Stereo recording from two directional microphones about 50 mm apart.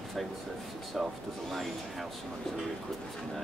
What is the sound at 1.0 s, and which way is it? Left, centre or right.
Speech, centre.